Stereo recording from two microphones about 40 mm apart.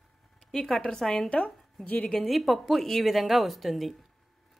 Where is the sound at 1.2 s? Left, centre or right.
Left.